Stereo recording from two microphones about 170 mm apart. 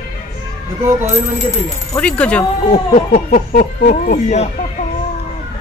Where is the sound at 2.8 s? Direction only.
45° left (ahead or behind).